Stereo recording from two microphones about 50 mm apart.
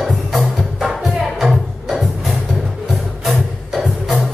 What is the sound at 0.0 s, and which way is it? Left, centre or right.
Music, centre.